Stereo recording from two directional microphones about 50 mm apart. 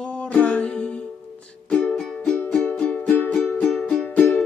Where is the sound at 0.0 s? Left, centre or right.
Left.